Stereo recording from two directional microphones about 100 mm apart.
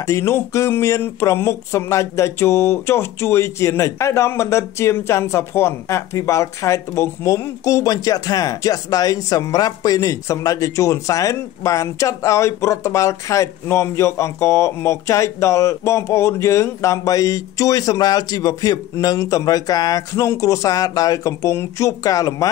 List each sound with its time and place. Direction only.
0.0 s speech: 30° left (ahead or behind)